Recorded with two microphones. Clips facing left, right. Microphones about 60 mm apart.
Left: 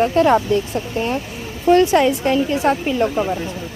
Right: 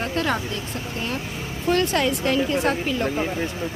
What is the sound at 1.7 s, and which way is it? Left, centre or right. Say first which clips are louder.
A woman's voice: left 8 dB; centre.